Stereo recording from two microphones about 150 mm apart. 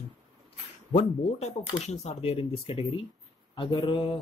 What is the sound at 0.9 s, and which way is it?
Speech, 45° left (ahead or behind).